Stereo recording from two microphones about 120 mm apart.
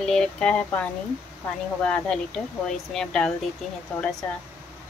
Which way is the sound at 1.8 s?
10° left (ahead or behind).